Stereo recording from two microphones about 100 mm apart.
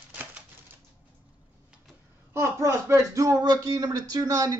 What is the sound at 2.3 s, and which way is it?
Speech, 25° right (ahead or behind).